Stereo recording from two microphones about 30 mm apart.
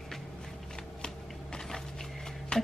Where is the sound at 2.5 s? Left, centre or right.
Left.